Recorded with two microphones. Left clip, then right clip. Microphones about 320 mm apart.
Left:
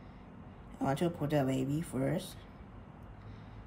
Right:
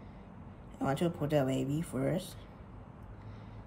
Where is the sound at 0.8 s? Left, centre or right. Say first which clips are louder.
Even; centre.